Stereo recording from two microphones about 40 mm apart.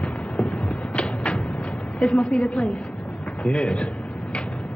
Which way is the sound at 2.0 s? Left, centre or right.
Left.